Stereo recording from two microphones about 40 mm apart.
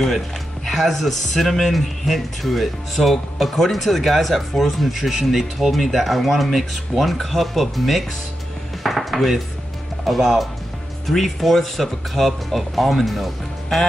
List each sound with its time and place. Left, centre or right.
0.7 s speech: centre
8.8 s chopping: centre
10.0 s speech: centre